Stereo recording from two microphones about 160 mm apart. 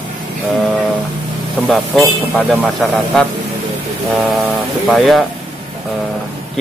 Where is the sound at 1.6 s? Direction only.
Centre (ahead or behind).